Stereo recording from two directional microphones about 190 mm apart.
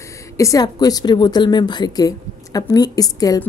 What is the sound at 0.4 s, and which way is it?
A woman's voice, 20° left (ahead or behind).